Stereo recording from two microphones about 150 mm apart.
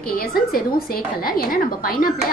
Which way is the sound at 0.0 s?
85° left.